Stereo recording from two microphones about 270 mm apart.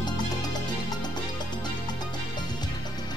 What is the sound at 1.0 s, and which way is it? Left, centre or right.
Music, centre.